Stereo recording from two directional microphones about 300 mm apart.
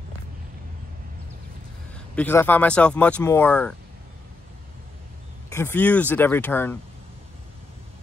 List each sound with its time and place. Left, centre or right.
2.0 s speech: centre
5.5 s speech: centre